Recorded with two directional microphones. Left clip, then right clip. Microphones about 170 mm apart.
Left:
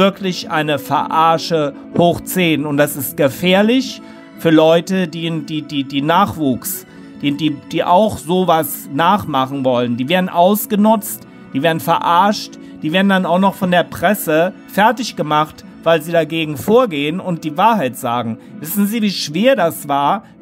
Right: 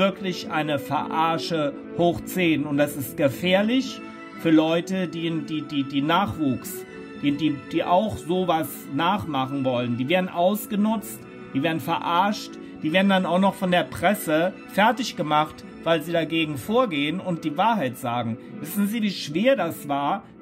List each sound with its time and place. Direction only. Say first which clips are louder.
0.0 s a man's voice: left 8 dB; 45° left (ahead or behind)